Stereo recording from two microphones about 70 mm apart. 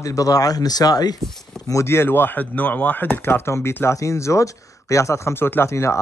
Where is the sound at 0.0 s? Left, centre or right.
Left.